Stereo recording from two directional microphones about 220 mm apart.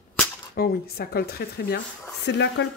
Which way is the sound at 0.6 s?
45° left (ahead or behind).